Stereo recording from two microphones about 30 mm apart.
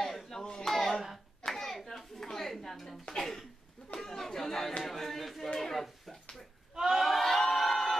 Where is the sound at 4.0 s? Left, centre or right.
Centre.